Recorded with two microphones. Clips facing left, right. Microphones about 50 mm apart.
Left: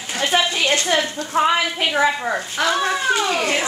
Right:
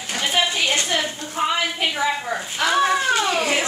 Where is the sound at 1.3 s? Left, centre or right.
Left.